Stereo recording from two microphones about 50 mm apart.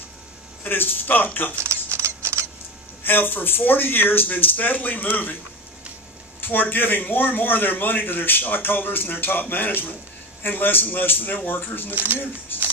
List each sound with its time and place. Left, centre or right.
0.7 s a man's voice: left
1.6 s a sound: right
3.0 s speech: left
6.4 s a man's voice: left
11.9 s speech: right
12.5 s music: left